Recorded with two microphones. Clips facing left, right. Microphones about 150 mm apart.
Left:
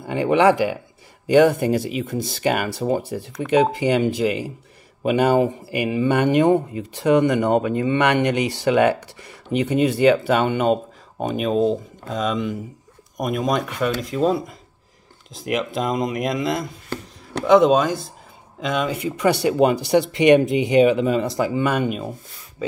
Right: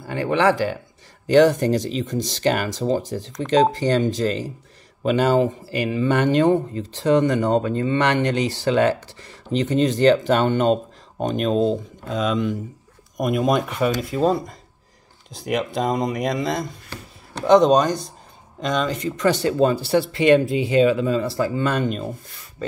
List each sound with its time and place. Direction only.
0.0 s speech: 20° left (ahead or behind)